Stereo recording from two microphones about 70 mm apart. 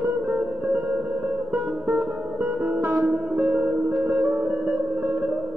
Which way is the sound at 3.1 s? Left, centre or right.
Right.